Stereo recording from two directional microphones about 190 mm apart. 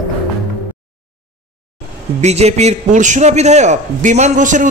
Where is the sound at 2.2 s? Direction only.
35° right (ahead or behind).